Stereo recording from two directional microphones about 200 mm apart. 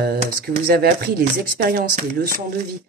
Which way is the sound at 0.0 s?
50° right (ahead or behind).